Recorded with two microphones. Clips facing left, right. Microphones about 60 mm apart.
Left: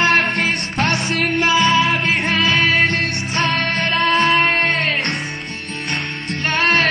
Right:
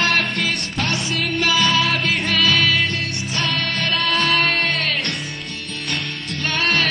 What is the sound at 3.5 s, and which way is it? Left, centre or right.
Music, left.